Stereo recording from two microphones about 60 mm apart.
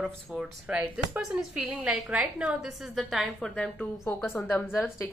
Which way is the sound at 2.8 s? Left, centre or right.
Centre.